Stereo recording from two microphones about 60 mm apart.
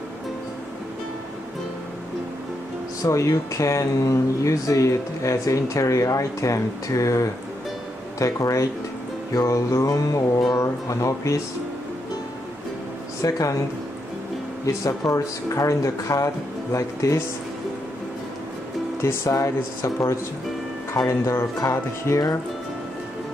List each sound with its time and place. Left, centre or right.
3.0 s speech: left
9.3 s music: left
10.5 s speech: left
13.2 s speech: left
14.7 s speech: left
18.9 s speech: left